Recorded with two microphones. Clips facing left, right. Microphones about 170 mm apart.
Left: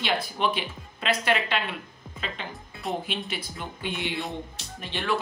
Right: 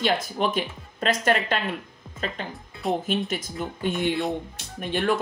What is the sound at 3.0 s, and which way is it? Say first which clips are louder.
Speech: right 7 dB; 45° right (ahead or behind).